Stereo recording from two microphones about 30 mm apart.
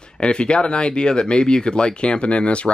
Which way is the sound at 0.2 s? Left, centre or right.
Left.